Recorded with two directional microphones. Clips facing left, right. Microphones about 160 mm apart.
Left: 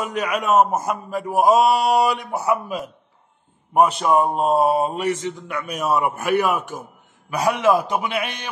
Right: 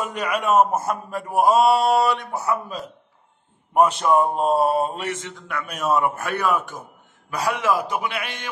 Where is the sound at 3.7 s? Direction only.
5° left (ahead or behind).